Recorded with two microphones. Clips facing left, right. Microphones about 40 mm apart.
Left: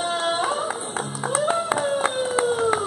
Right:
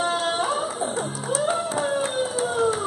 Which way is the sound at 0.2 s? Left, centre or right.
Centre.